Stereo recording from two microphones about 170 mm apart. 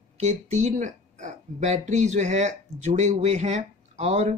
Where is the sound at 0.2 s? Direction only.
40° right (ahead or behind).